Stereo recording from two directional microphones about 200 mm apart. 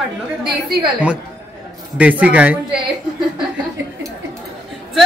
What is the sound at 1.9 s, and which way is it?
Speech, 5° right (ahead or behind).